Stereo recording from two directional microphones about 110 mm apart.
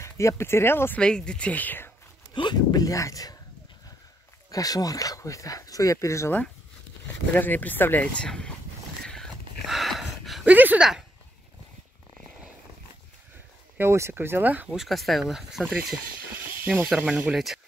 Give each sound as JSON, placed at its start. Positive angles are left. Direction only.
{"t": 0.0, "sound": "speech", "side_deg": 25}
{"t": 1.0, "sound": "speech", "side_deg": 10}
{"t": 2.3, "sound": "speech", "side_deg": 40}
{"t": 4.5, "sound": "speech", "side_deg": 35}
{"t": 7.3, "sound": "speech", "side_deg": 15}
{"t": 9.0, "sound": "a sound", "side_deg": 5}
{"t": 10.4, "sound": "speech", "side_deg": -15}
{"t": 13.7, "sound": "speech", "side_deg": -25}
{"t": 14.7, "sound": "speech", "side_deg": 0}
{"t": 16.6, "sound": "speech", "side_deg": -15}